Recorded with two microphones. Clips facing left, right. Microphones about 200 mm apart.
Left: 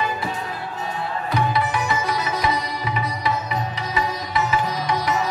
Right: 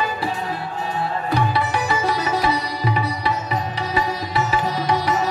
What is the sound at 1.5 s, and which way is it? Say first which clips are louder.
Sitar: right 1 dB; 35° right (ahead or behind).